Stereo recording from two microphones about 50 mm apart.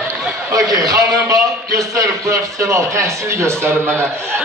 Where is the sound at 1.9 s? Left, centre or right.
Right.